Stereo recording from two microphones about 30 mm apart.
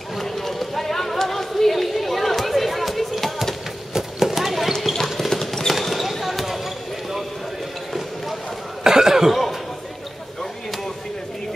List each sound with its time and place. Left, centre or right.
0.2 s run: centre
3.9 s clip-clop: centre
5.3 s a sound: centre
5.7 s basketball bounce: centre
8.8 s cough: centre
9.3 s a sound: centre